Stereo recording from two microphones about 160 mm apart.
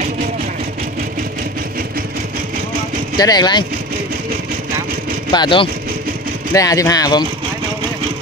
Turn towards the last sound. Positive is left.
turn(degrees=25)  # may be behind; listen again after turning